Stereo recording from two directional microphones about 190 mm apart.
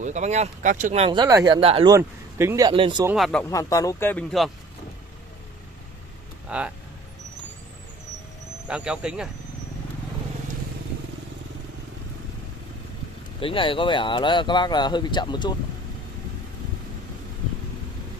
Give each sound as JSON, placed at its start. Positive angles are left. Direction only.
{"t": 0.0, "sound": "speech", "side_deg": -40}
{"t": 2.0, "sound": "speech", "side_deg": -15}
{"t": 3.1, "sound": "speech", "side_deg": 0}
{"t": 3.4, "sound": "speech", "side_deg": 15}
{"t": 6.5, "sound": "speech", "side_deg": -5}
{"t": 8.6, "sound": "speech", "side_deg": -5}
{"t": 13.4, "sound": "speech", "side_deg": 25}